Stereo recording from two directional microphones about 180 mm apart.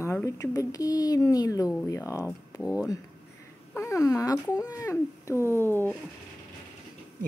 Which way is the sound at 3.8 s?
15° left (ahead or behind).